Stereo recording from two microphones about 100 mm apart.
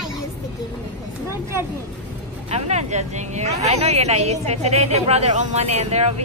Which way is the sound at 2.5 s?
90° right.